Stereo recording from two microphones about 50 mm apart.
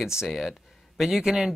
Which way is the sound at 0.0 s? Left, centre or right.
Centre.